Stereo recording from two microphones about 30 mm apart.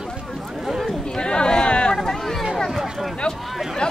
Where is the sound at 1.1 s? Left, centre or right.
Left.